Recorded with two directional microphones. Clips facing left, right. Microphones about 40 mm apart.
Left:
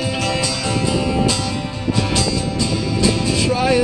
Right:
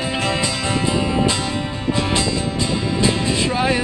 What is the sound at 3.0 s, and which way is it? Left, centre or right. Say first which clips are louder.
Music: left 2 dB; right.